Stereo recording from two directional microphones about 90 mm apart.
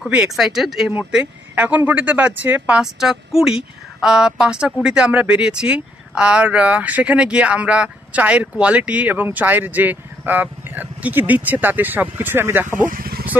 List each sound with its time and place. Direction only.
0.3 s speech: 5° right (ahead or behind)
1.5 s speech: 20° right (ahead or behind)